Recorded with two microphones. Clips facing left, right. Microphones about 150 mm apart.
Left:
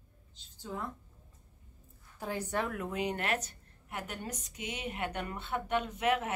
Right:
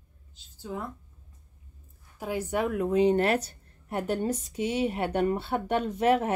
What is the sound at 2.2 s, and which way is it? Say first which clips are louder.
A woman's voice: right 6 dB; 10° right (ahead or behind).